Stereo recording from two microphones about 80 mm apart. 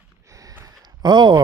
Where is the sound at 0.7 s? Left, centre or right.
Right.